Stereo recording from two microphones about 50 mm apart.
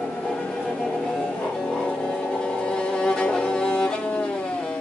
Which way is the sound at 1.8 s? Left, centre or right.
Centre.